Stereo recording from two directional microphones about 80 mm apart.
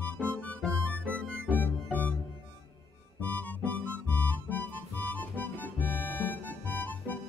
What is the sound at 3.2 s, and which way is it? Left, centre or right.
Music, left.